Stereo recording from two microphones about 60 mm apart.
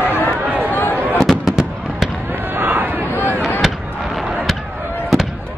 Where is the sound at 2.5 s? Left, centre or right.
Right.